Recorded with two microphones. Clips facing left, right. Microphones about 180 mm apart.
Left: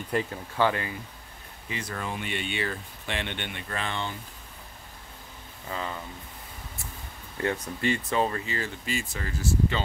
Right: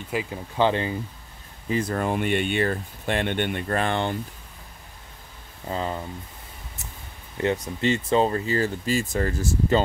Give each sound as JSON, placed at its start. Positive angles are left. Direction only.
{"t": 0.1, "sound": "speech", "side_deg": -10}
{"t": 0.6, "sound": "speech", "side_deg": -25}
{"t": 1.9, "sound": "speech", "side_deg": -55}
{"t": 5.7, "sound": "speech", "side_deg": -30}
{"t": 7.4, "sound": "speech", "side_deg": -20}